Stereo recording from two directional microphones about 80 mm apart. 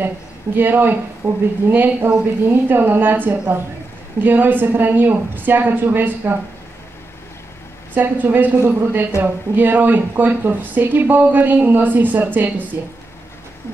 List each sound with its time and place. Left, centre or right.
0.6 s speech: right
7.9 s speech: right